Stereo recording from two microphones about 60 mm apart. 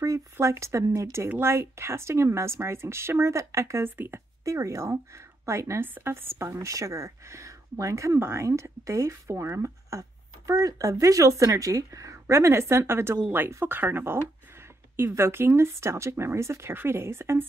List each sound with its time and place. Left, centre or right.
0.0 s speech: right
3.8 s a woman's voice: right
4.5 s speech: right
5.8 s a woman's voice: right
6.5 s speech: right
8.2 s speech: right
8.6 s a woman's voice: right